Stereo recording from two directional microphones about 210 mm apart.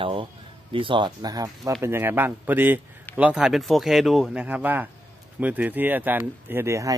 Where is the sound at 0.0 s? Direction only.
25° right (ahead or behind).